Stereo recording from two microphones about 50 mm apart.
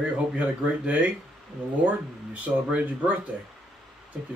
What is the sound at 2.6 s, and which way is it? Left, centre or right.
Speech, right.